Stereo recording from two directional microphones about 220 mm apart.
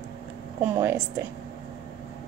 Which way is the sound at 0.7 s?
10° right (ahead or behind).